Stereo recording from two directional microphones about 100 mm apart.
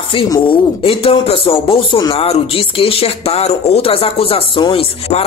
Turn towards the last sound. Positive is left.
turn(degrees=80)